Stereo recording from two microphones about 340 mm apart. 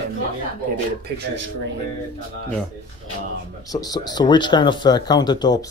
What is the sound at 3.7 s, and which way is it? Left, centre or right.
Speech, centre.